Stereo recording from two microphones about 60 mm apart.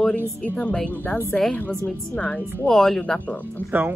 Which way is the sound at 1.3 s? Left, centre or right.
Centre.